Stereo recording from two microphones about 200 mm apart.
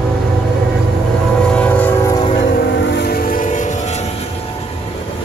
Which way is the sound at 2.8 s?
55° left (ahead or behind).